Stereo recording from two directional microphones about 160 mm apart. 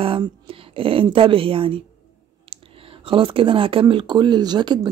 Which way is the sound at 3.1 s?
35° right (ahead or behind).